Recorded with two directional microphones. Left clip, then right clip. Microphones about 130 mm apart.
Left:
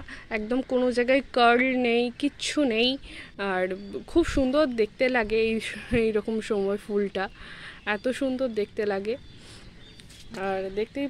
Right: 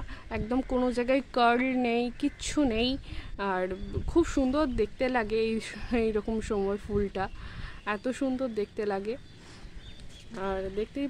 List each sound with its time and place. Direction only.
0.1 s speech: 10° left (ahead or behind)
10.6 s speech: 5° left (ahead or behind)